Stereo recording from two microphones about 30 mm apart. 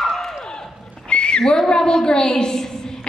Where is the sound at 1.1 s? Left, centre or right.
Left.